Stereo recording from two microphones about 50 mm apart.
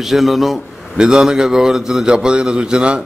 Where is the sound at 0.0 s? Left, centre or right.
Centre.